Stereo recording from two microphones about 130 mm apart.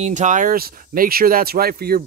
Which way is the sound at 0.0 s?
65° right (ahead or behind).